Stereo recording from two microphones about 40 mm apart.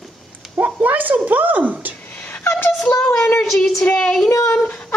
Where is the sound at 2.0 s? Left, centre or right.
Left.